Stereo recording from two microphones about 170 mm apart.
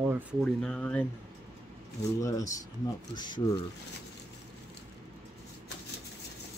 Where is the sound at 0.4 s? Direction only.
5° left (ahead or behind).